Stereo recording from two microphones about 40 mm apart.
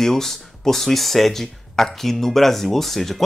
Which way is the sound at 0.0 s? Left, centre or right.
Centre.